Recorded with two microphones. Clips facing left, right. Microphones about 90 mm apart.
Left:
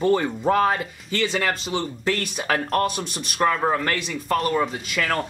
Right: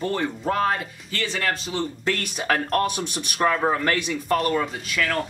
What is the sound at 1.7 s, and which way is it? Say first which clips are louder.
A man's voice: left 1 dB; 5° left (ahead or behind).